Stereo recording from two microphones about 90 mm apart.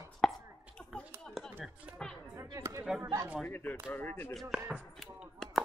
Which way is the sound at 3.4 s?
25° left (ahead or behind).